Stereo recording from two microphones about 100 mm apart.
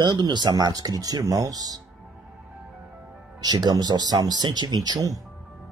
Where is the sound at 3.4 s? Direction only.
45° right (ahead or behind).